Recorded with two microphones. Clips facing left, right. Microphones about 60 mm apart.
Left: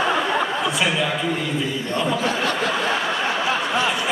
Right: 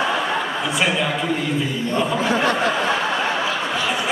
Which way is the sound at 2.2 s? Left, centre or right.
Right.